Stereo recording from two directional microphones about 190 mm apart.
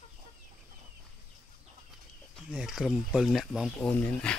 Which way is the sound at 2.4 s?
Centre (ahead or behind).